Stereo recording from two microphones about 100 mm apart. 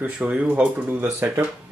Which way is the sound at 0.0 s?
15° right (ahead or behind).